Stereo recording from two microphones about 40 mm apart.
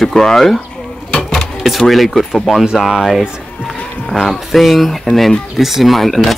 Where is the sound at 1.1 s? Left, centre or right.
Centre.